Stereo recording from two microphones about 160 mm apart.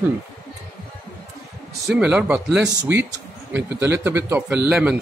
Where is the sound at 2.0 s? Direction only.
10° right (ahead or behind).